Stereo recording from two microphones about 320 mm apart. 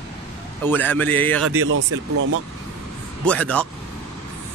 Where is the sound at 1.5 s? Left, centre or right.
Right.